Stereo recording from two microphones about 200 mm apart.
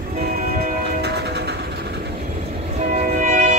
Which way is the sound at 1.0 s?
55° right (ahead or behind).